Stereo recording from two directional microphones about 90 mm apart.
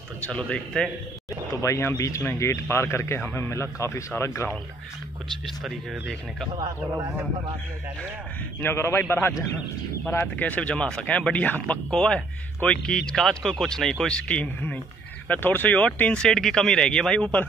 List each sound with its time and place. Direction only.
0.2 s speech: 15° left (ahead or behind)
1.6 s speech: 30° left (ahead or behind)
5.6 s speech: centre (ahead or behind)
8.5 s a man's voice: 25° left (ahead or behind)
10.0 s speech: 20° left (ahead or behind)